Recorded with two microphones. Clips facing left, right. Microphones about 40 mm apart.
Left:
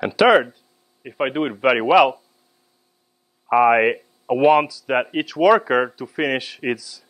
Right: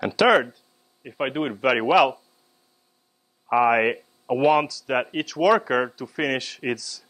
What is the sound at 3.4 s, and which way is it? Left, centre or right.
Speech, centre.